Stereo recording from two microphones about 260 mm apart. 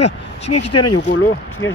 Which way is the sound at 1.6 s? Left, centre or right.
Left.